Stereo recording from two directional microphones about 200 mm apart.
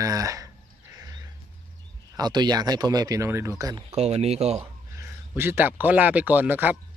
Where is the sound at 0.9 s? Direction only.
20° right (ahead or behind).